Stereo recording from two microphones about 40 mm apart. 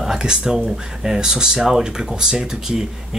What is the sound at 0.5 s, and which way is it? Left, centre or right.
Speech, centre.